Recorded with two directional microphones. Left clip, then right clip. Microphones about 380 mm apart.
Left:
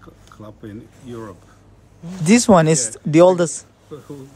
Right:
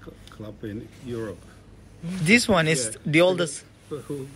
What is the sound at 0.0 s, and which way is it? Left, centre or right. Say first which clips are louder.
Speech: left 1 dB; centre.